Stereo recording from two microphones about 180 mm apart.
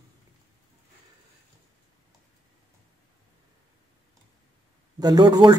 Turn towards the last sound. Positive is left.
turn(degrees=-20)  # may be behind; listen again after turning